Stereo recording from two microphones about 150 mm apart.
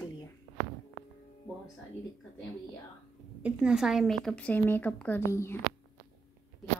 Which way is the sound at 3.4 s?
5° right (ahead or behind).